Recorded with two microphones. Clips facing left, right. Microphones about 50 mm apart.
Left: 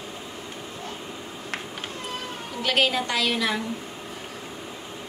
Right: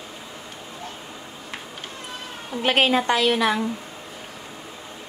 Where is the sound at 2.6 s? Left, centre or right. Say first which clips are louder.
Right 4 dB; right.